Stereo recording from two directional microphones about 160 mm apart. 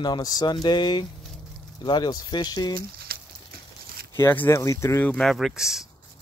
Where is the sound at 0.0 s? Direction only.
25° left (ahead or behind).